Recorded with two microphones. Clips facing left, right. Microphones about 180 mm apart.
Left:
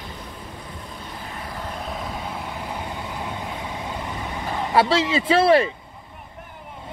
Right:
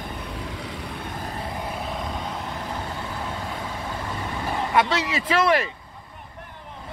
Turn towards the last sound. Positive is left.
turn(degrees=30)  # may be behind; listen again after turning